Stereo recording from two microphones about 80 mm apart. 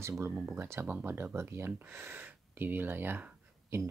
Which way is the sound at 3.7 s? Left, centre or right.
Right.